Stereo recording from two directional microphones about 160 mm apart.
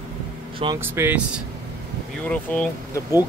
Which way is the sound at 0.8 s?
15° right (ahead or behind).